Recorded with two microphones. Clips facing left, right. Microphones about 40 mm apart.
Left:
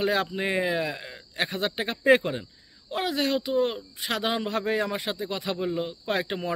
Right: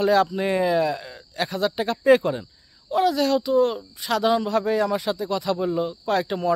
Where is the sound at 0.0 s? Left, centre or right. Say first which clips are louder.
Right 6 dB; left.